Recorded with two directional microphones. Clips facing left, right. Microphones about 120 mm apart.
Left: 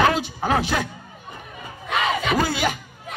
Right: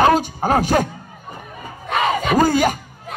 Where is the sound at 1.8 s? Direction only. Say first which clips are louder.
Right 4 dB; 45° right (ahead or behind).